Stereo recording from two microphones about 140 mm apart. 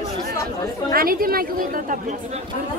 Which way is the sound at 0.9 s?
90° right.